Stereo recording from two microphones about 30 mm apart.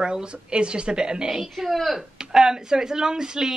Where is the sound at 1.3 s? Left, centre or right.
Centre.